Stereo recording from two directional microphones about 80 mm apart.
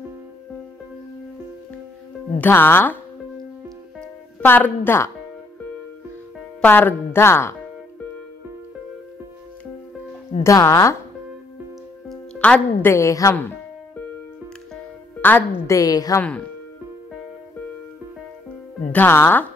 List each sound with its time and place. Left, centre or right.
2.4 s speech: left
4.4 s speech: left
6.6 s speech: left
10.4 s speech: left
12.4 s a woman's voice: centre
12.8 s speech: left
15.2 s speech: left
15.7 s a woman's voice: left
16.2 s speech: centre
18.9 s speech: left